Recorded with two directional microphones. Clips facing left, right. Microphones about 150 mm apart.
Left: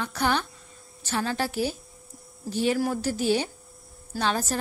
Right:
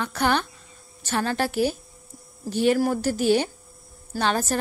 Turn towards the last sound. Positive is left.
turn(degrees=-60)  # may be behind; listen again after turning